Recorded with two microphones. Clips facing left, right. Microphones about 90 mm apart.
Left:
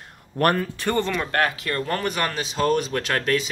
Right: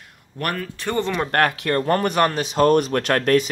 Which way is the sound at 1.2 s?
55° right (ahead or behind).